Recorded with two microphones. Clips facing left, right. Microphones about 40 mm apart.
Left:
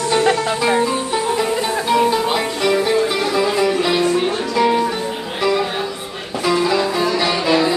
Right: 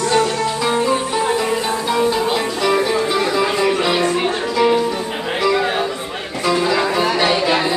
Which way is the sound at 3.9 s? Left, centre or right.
Right.